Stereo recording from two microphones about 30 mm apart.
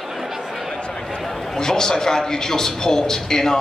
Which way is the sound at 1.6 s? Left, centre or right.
Left.